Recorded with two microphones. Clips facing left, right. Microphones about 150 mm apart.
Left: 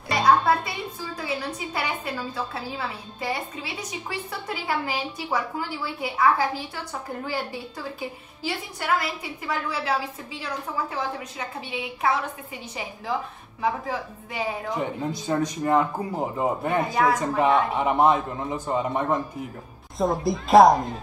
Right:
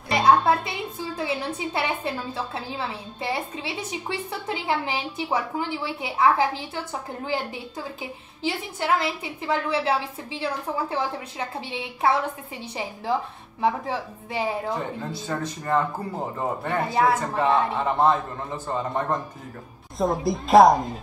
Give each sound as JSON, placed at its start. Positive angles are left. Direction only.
{"t": 0.7, "sound": "a woman's voice", "side_deg": -25}
{"t": 13.6, "sound": "a woman's voice", "side_deg": -30}
{"t": 14.8, "sound": "speech", "side_deg": 15}
{"t": 16.9, "sound": "a woman's voice", "side_deg": -30}
{"t": 17.4, "sound": "a woman's voice", "side_deg": 15}